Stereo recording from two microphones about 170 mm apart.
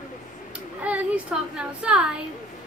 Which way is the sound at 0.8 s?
10° right (ahead or behind).